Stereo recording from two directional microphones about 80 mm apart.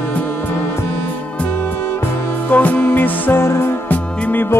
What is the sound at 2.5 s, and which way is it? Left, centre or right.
Music, centre.